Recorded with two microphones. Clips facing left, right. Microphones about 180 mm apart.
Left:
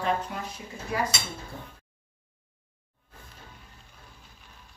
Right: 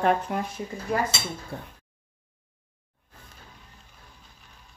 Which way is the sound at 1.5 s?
65° right (ahead or behind).